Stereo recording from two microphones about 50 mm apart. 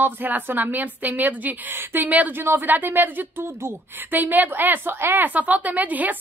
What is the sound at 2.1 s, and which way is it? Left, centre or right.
Speech, right.